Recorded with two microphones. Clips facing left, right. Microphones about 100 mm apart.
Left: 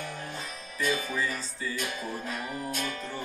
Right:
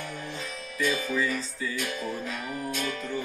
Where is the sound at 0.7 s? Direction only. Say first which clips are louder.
Right 2 dB; 40° left (ahead or behind).